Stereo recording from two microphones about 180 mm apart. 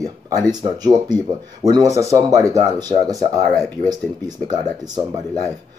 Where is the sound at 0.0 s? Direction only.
20° right (ahead or behind).